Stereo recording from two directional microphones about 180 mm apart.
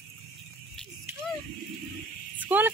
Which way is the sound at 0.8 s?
5° left (ahead or behind).